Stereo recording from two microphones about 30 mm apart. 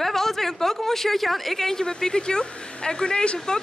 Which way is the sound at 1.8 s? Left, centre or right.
Left.